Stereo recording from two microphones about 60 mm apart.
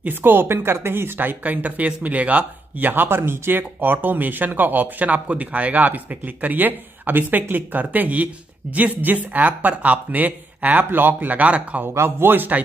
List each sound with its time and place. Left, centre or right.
0.0 s speech: right
11.9 s speech: right